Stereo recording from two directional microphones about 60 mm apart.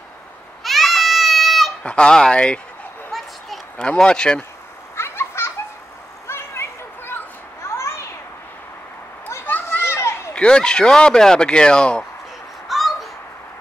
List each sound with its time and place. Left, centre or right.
0.7 s a sound: centre
1.8 s speech: centre
3.1 s a sound: centre
3.7 s speech: centre
4.9 s children playing: left
6.2 s a sound: left
7.6 s children playing: left
9.7 s children playing: left
10.3 s speech: centre
12.6 s babbling: centre